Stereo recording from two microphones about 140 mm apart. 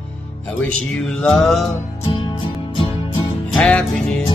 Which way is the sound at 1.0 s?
5° left (ahead or behind).